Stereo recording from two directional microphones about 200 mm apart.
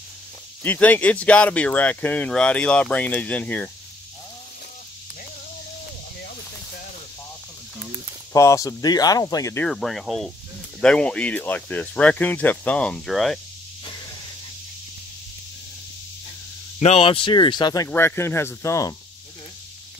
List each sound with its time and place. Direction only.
0.7 s speech: 10° left (ahead or behind)
8.3 s speech: 15° left (ahead or behind)
9.7 s speech: centre (ahead or behind)
16.8 s speech: 30° left (ahead or behind)